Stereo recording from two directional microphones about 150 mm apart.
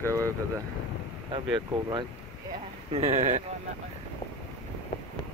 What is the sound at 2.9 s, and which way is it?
Speech, 50° right (ahead or behind).